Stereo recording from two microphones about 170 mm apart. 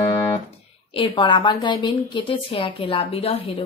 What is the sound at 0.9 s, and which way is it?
A woman's voice, 30° left (ahead or behind).